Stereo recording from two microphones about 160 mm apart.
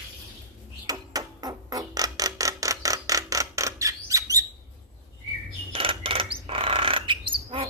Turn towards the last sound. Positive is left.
turn(degrees=-35)  # may be behind; listen again after turning